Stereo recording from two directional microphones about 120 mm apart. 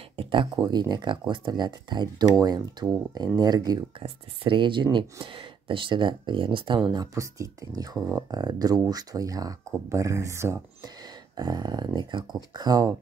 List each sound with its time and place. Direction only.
0.1 s speech: 45° right (ahead or behind)
4.0 s speech: 45° right (ahead or behind); by 10.6 s 25° right (ahead or behind)
11.3 s speech: 35° right (ahead or behind)